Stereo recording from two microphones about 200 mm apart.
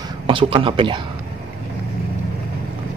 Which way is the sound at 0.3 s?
25° right (ahead or behind).